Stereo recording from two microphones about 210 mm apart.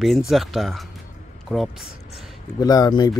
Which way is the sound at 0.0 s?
Centre (ahead or behind).